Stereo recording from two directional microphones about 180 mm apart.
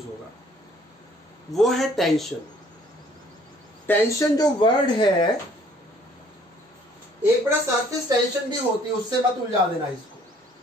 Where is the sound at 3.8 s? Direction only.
20° left (ahead or behind).